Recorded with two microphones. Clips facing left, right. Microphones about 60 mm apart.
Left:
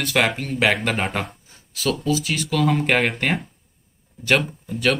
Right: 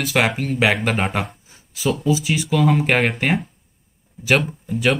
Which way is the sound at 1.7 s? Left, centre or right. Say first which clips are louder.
Right 2 dB; centre.